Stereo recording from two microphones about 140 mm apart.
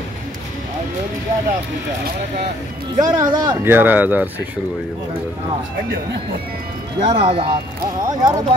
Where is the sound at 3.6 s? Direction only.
15° right (ahead or behind).